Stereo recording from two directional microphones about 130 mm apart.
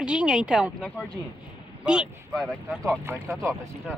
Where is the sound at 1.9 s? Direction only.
5° right (ahead or behind).